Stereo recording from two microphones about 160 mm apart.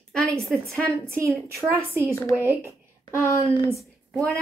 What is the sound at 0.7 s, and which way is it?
Speech, 5° left (ahead or behind).